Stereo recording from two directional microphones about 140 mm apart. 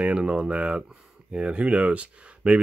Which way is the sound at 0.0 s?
10° right (ahead or behind).